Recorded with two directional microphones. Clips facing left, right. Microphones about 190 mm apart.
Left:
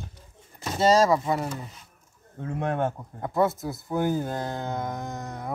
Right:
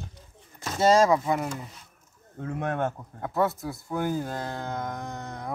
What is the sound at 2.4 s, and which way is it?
Speech, 10° left (ahead or behind).